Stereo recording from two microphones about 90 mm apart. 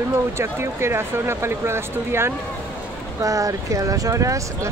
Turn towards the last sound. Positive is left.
turn(degrees=-35)  # may be behind; listen again after turning